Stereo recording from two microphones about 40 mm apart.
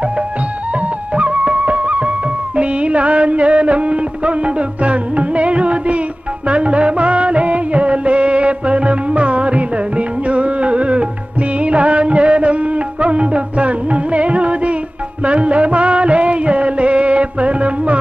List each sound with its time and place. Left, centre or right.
0.7 s music: right